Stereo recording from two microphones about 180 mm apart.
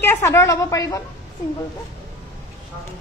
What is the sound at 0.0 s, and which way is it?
Speech, 15° left (ahead or behind).